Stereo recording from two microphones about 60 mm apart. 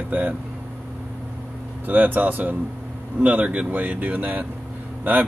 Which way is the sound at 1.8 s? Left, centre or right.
Right.